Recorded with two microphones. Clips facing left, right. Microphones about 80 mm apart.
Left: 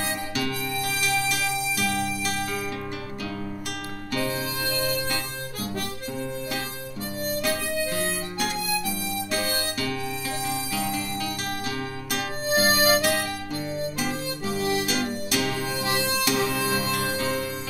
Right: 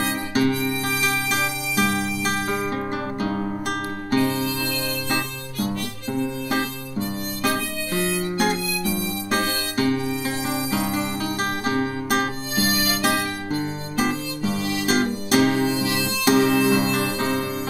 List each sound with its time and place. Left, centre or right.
0.0 s music: right
4.1 s music: right
6.1 s harmonica: right
10.5 s music: right
12.5 s harmonica: left
13.0 s music: right
14.6 s music: left
14.9 s music: right
15.8 s harmonica: left
16.3 s music: right
16.7 s music: right